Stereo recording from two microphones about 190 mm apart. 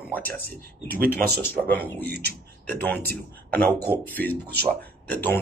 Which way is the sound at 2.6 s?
10° left (ahead or behind).